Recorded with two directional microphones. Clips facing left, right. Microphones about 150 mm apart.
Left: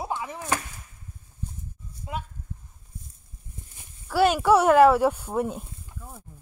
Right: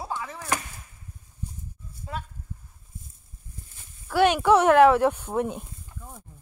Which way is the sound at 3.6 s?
20° left (ahead or behind).